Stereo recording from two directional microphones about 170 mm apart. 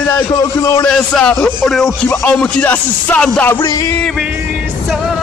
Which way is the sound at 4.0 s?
5° left (ahead or behind).